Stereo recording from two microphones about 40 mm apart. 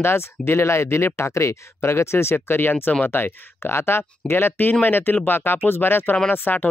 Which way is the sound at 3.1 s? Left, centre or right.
Left.